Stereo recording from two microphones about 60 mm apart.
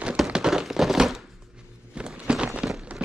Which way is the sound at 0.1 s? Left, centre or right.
Centre.